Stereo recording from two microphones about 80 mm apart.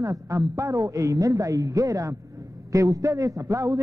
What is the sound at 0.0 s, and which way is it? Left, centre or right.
A man's voice, right.